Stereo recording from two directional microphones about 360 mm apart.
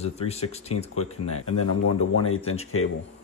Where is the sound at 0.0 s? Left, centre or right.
Centre.